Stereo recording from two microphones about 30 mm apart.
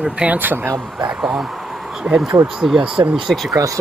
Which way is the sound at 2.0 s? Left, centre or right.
Right.